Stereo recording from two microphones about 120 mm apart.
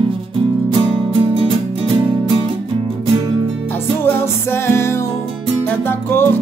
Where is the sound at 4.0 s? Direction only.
20° left (ahead or behind).